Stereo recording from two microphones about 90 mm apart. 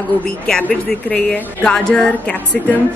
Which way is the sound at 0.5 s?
5° left (ahead or behind).